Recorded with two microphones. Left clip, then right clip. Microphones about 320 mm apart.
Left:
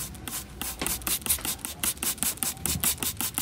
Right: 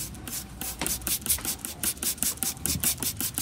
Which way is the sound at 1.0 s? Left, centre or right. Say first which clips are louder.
Left 1 dB; centre.